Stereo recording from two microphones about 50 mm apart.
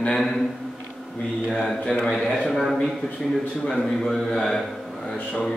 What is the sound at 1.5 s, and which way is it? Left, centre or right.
Speech, centre.